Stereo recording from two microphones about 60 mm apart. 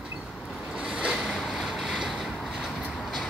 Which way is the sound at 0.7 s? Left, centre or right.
Centre.